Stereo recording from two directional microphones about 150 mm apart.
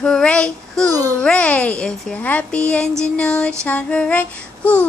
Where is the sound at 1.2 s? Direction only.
10° left (ahead or behind).